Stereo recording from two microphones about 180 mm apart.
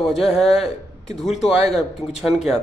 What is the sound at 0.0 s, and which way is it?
Speech, centre (ahead or behind).